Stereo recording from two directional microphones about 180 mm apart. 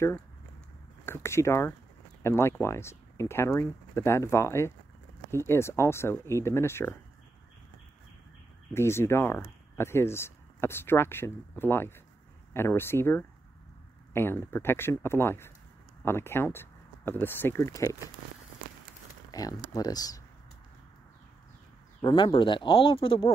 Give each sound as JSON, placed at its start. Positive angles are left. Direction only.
{"t": 1.0, "sound": "speech", "side_deg": 15}
{"t": 8.7, "sound": "speech", "side_deg": 15}
{"t": 19.3, "sound": "speech", "side_deg": 20}
{"t": 22.0, "sound": "speech", "side_deg": 25}